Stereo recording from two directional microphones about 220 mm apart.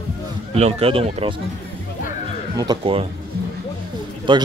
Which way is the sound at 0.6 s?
30° right (ahead or behind).